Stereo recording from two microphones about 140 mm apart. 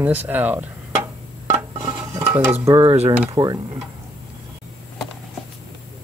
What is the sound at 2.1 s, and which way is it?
Stir, 15° right (ahead or behind).